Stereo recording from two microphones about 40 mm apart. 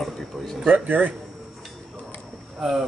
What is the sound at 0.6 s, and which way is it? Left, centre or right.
Speech, right.